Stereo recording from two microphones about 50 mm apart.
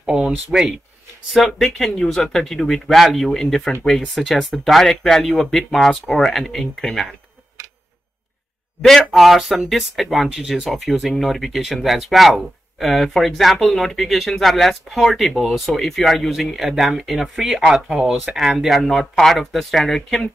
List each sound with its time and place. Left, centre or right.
0.0 s a sound: centre
0.5 s speech: centre
1.3 s speech: centre
8.8 s speech: centre
9.1 s speech: centre
18.8 s speech: centre